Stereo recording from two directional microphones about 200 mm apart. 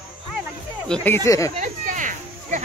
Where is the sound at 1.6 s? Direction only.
40° right (ahead or behind).